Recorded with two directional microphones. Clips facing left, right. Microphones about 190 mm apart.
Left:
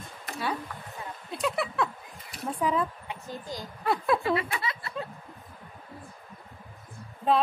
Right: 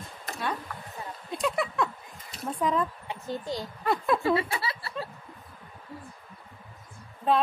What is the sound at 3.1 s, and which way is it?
Speech, 30° right (ahead or behind).